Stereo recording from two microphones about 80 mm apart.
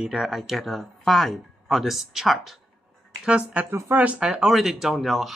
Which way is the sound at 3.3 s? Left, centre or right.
Centre.